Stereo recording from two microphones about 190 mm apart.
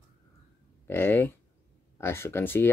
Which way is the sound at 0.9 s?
10° left (ahead or behind).